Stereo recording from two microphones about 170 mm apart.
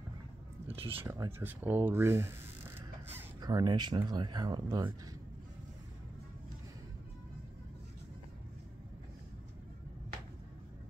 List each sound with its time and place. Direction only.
0.7 s speech: 35° right (ahead or behind)
1.0 s speech: 20° right (ahead or behind)
3.3 s speech: 25° right (ahead or behind)